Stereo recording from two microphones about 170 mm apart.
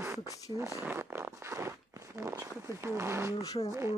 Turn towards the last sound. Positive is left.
turn(degrees=20)  # may be behind; listen again after turning